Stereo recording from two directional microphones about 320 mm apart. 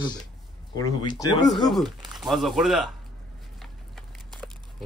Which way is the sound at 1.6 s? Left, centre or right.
Centre.